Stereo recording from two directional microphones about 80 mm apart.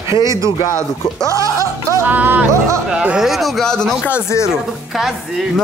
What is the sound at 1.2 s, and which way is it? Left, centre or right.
Music, right.